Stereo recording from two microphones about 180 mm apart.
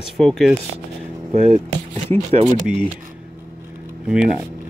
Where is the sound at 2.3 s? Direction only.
35° right (ahead or behind).